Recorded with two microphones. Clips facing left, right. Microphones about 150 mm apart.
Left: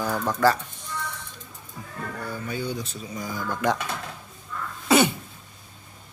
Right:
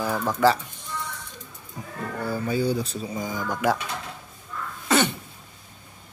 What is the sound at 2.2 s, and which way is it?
Speech, 30° right (ahead or behind).